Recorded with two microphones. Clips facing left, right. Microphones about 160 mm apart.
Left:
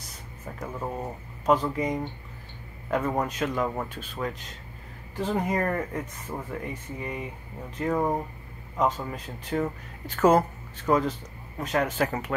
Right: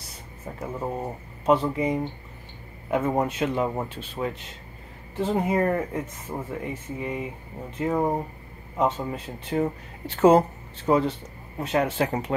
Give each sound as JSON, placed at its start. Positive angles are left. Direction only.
{"t": 0.0, "sound": "a sound", "side_deg": -30}
{"t": 0.7, "sound": "speech", "side_deg": -15}
{"t": 1.4, "sound": "speech", "side_deg": -30}
{"t": 2.9, "sound": "speech", "side_deg": -25}